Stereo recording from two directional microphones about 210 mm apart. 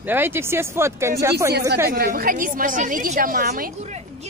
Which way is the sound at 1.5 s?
50° right (ahead or behind).